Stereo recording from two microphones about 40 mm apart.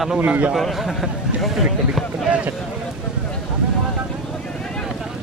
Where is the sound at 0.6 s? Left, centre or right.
Centre.